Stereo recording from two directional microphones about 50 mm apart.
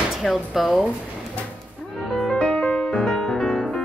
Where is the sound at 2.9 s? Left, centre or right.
Centre.